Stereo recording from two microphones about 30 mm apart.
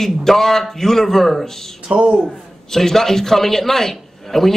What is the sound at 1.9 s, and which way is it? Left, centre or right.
Speech, right.